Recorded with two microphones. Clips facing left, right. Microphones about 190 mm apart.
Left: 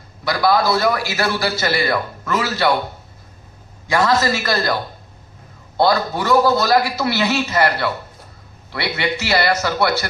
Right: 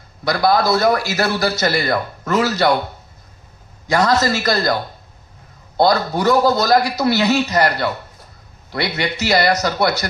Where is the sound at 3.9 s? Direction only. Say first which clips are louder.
Right 1 dB; 40° right (ahead or behind).